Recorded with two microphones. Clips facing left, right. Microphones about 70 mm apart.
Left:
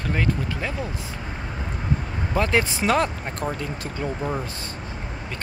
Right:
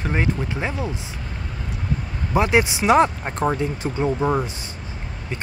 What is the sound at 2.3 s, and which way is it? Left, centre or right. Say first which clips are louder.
Speech: right 4 dB; centre.